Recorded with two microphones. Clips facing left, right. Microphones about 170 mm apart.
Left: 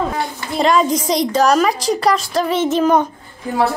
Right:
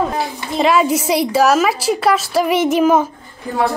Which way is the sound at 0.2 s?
5° right (ahead or behind).